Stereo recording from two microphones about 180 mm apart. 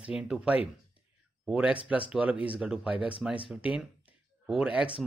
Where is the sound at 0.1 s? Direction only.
5° right (ahead or behind).